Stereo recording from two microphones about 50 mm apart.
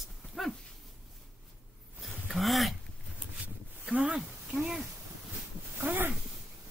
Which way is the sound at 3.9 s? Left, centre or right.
Right.